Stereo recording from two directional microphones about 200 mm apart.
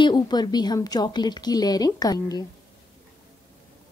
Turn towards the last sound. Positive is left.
turn(degrees=20)  # may be behind; listen again after turning